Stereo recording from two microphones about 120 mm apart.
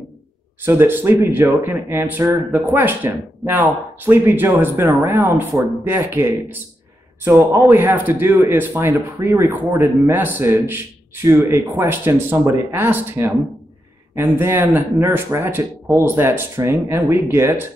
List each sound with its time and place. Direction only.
0.6 s a man's voice: 20° right (ahead or behind)
2.8 s a man's voice: 15° right (ahead or behind)